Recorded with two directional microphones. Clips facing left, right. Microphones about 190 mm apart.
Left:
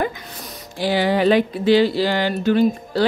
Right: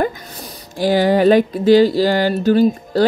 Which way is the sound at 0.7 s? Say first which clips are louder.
Right 5 dB; 45° right (ahead or behind).